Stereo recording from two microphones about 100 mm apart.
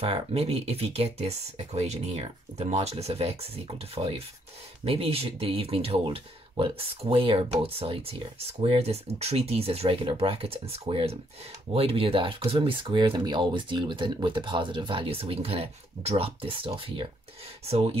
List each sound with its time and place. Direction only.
0.0 s speech: 75° right (ahead or behind); by 17.1 s 60° right (ahead or behind)
17.6 s speech: 90° right